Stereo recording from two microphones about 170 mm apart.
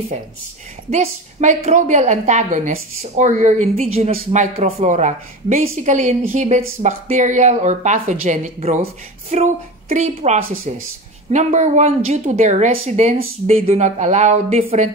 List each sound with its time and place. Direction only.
0.8 s a woman's voice: 45° right (ahead or behind)